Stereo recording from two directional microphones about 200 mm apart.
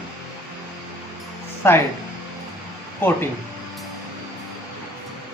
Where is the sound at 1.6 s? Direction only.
10° left (ahead or behind).